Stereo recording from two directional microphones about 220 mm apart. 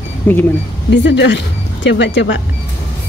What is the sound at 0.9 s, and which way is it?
Speech, 55° left (ahead or behind).